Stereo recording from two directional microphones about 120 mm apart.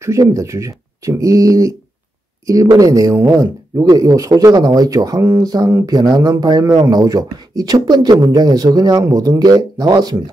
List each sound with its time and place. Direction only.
0.0 s speech: 25° right (ahead or behind)